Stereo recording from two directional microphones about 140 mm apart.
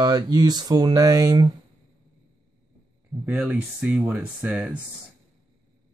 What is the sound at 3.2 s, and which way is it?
Speech, 10° right (ahead or behind).